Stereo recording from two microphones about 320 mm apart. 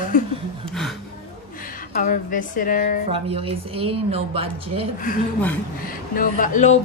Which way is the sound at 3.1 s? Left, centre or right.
Centre.